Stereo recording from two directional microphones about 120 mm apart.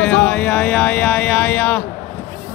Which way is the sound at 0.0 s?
10° left (ahead or behind).